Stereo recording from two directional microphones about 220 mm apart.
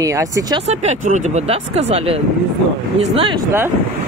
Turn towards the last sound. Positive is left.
turn(degrees=-25)  # may be behind; listen again after turning